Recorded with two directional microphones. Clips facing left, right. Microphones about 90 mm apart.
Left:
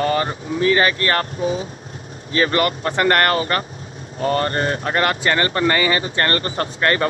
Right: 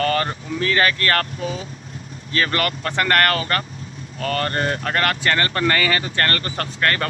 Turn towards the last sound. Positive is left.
turn(degrees=25)  # may be behind; listen again after turning